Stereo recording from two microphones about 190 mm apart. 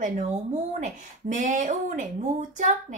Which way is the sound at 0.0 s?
40° right (ahead or behind).